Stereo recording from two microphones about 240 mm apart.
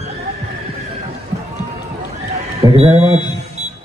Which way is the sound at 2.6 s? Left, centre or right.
Centre.